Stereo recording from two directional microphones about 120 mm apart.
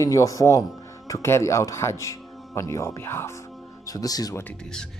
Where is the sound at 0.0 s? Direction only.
30° left (ahead or behind).